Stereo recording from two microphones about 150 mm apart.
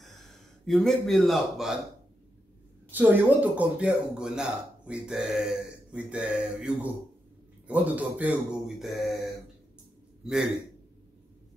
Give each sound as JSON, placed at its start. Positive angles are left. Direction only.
{"t": 0.7, "sound": "speech", "side_deg": 0}
{"t": 2.9, "sound": "speech", "side_deg": -10}